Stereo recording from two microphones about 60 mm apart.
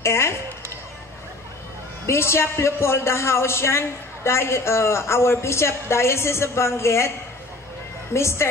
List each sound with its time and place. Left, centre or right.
0.0 s a man's voice: left
2.0 s a man's voice: left
8.1 s a man's voice: left